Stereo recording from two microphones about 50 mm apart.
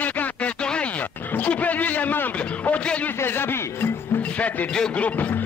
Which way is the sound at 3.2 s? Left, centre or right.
Left.